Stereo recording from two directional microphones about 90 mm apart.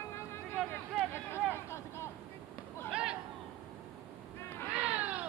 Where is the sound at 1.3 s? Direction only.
30° left (ahead or behind).